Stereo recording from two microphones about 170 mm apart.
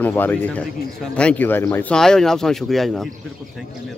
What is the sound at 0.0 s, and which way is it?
Speech, 10° left (ahead or behind).